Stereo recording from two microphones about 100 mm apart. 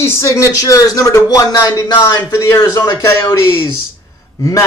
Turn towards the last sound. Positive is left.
turn(degrees=30)  # may be behind; listen again after turning